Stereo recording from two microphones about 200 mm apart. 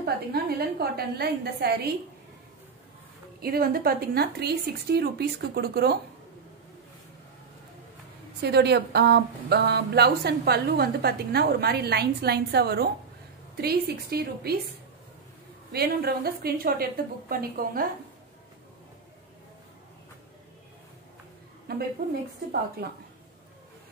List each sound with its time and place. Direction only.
0.0 s speech: 50° right (ahead or behind)
3.3 s speech: 50° right (ahead or behind)
8.4 s speech: 55° right (ahead or behind)
15.7 s speech: 50° right (ahead or behind)
21.7 s speech: 50° right (ahead or behind)